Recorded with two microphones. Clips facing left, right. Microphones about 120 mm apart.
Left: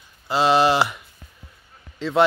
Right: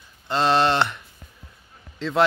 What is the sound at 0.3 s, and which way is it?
Speech, 5° left (ahead or behind).